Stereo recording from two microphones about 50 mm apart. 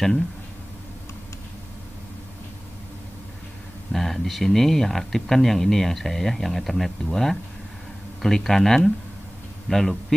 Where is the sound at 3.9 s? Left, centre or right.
Centre.